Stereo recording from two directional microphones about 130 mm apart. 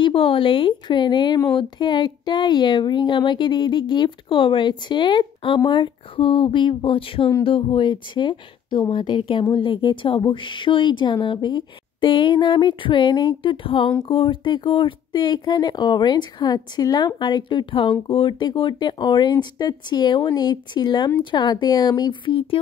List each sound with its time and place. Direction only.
0.0 s speech: 45° left (ahead or behind)